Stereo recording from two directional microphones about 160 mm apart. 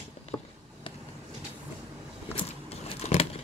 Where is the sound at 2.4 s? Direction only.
40° left (ahead or behind).